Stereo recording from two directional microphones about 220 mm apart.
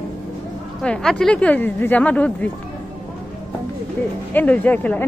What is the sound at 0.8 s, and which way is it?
Speech, 5° left (ahead or behind).